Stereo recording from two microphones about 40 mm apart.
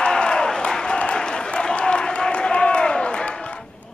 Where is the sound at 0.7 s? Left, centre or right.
Left.